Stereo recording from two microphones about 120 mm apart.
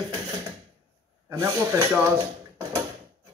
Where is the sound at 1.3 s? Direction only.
25° right (ahead or behind).